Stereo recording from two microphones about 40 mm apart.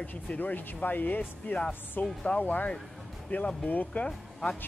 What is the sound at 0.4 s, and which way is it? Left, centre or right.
Speech, left.